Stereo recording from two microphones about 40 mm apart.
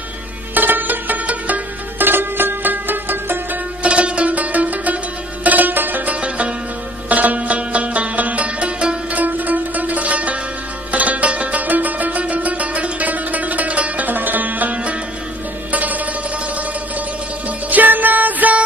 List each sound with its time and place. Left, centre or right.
0.6 s music: right
2.0 s music: right
3.8 s music: right
6.2 s music: right
9.1 s music: right
17.6 s music: right